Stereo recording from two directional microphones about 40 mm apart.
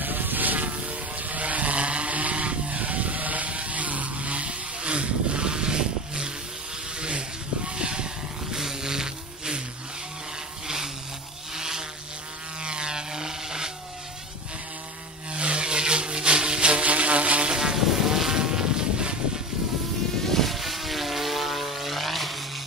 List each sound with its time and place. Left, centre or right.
0.0 s vehicle: right
8.5 s a sound: centre
11.5 s vehicle: centre
15.3 s a sound: right
16.8 s insect: right
17.5 s vehicle: centre
17.7 s vehicle: centre; by 19.1 s right
20.2 s vehicle: centre